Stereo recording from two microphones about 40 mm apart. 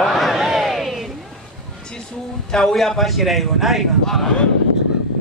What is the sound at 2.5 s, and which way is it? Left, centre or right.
Speech, centre.